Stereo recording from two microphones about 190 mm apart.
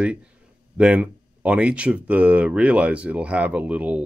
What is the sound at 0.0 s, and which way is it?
Speech, 5° right (ahead or behind).